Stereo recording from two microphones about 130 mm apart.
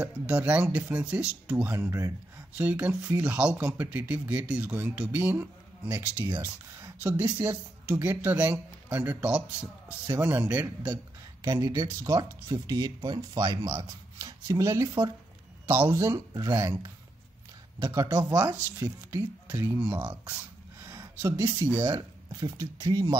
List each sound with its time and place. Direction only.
0.0 s speech: 15° right (ahead or behind)
1.8 s speech: 20° right (ahead or behind)
11.4 s speech: 30° right (ahead or behind)
18.3 s speech: 15° right (ahead or behind)
21.8 s speech: 30° right (ahead or behind)